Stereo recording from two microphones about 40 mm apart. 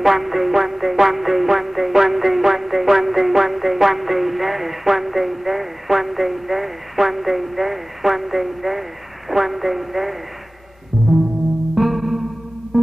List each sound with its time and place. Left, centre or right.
0.0 s music: centre
9.3 s a sound: centre
11.7 s music: centre
12.7 s music: centre